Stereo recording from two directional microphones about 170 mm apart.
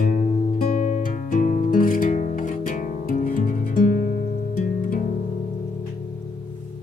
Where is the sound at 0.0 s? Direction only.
50° left (ahead or behind).